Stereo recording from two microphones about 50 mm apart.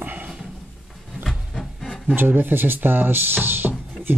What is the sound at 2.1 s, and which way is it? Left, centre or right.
Speech, right.